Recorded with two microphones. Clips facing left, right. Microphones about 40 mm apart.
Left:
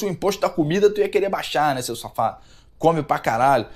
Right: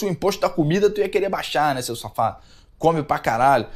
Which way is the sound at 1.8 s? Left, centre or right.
Centre.